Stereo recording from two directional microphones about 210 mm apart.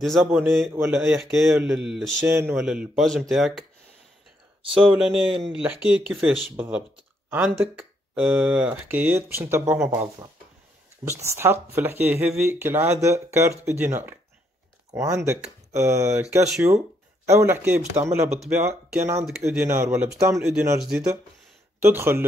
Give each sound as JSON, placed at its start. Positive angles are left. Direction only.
{"t": 0.0, "sound": "speech", "side_deg": 0}
{"t": 4.6, "sound": "speech", "side_deg": -25}
{"t": 4.9, "sound": "speech", "side_deg": -5}
{"t": 11.1, "sound": "speech", "side_deg": -15}